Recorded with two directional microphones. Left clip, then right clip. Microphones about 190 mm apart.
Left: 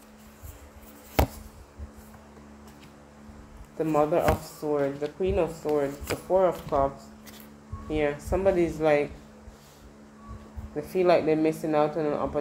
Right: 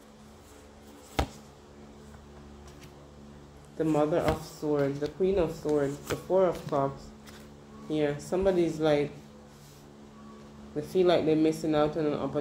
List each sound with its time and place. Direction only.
3.8 s speech: 20° left (ahead or behind)
10.8 s speech: 25° left (ahead or behind)